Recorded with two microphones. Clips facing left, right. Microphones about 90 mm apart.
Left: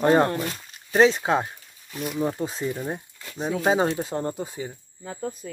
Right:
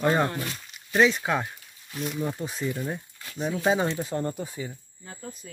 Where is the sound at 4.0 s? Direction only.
20° left (ahead or behind).